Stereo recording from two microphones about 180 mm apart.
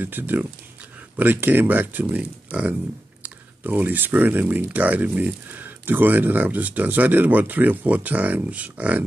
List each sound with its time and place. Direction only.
0.0 s speech: 10° right (ahead or behind)